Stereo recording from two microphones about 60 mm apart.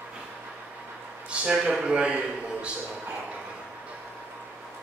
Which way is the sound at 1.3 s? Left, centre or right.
Centre.